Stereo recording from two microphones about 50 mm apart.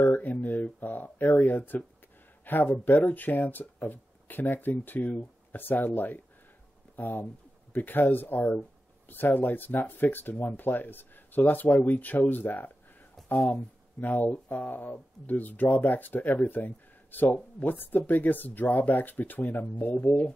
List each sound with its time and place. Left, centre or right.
0.0 s speech: left
13.9 s speech: left